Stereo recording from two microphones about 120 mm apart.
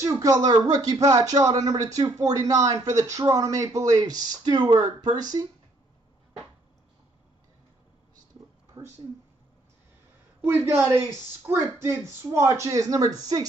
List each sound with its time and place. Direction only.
0.0 s speech: 30° right (ahead or behind)
8.8 s a sound: 20° right (ahead or behind)
10.4 s speech: 20° right (ahead or behind)